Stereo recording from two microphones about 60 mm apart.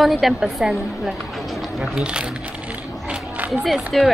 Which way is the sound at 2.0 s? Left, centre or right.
Centre.